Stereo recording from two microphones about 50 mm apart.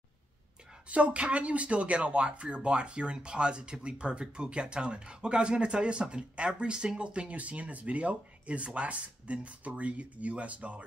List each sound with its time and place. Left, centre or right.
0.8 s speech: right